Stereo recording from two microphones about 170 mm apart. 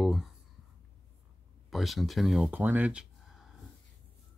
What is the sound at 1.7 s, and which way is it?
Speech, centre (ahead or behind).